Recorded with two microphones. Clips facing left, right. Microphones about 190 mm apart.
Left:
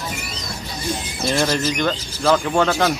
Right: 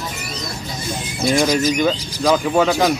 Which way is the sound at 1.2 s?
15° right (ahead or behind).